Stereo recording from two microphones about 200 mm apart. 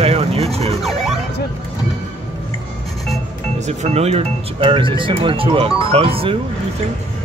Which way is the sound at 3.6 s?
35° right (ahead or behind).